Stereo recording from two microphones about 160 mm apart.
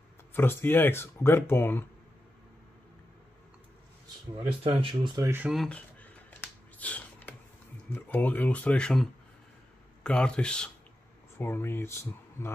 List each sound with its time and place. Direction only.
0.3 s speech: 15° left (ahead or behind)
4.6 s speech: 30° right (ahead or behind)
5.2 s speech: 15° right (ahead or behind)
5.5 s a man's voice: 5° left (ahead or behind)
6.8 s a sound: 10° left (ahead or behind)
7.9 s a man's voice: 10° left (ahead or behind)